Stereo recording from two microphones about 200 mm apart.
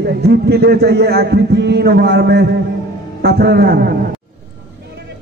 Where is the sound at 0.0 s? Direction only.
55° right (ahead or behind).